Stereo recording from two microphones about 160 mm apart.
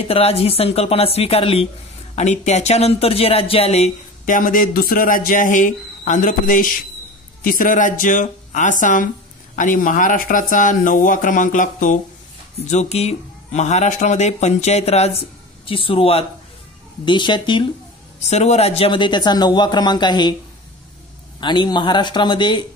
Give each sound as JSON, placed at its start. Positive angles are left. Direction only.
{"t": 0.0, "sound": "speech", "side_deg": 40}
{"t": 4.3, "sound": "speech", "side_deg": 60}
{"t": 12.5, "sound": "speech", "side_deg": 45}
{"t": 18.3, "sound": "speech", "side_deg": 40}
{"t": 21.4, "sound": "speech", "side_deg": 30}